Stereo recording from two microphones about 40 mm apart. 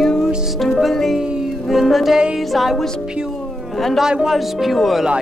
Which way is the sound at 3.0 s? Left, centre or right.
Centre.